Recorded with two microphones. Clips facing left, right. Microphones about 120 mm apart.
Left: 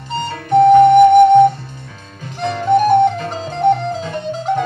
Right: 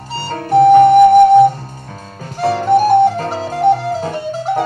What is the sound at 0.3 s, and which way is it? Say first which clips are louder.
Flute: right 1 dB; 40° right (ahead or behind).